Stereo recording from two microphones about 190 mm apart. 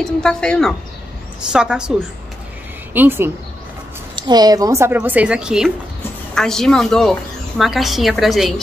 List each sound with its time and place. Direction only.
0.0 s a woman's voice: 5° left (ahead or behind)
4.1 s a woman's voice: 20° right (ahead or behind); by 8.5 s centre (ahead or behind)